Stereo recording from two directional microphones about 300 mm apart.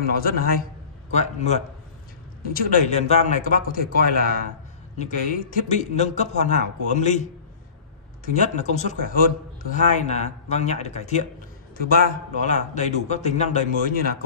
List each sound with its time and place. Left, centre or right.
0.2 s a man's voice: left
8.3 s a man's voice: left